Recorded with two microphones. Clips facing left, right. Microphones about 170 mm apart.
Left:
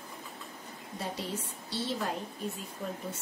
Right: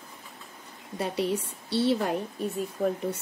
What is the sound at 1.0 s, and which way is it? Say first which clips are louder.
A woman's voice: right 9 dB; 65° right (ahead or behind).